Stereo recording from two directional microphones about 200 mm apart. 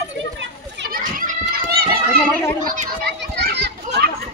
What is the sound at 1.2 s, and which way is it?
Children playing, 50° right (ahead or behind).